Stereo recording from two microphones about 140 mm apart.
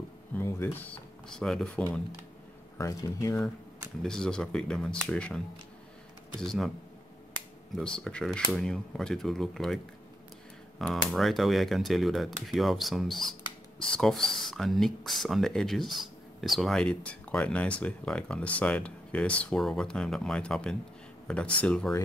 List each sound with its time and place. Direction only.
0.4 s speech: 15° left (ahead or behind)
2.8 s speech: 25° left (ahead or behind)
4.0 s speech: 5° left (ahead or behind)
6.4 s speech: 5° left (ahead or behind)
7.7 s speech: 5° left (ahead or behind)
10.8 s speech: 5° left (ahead or behind)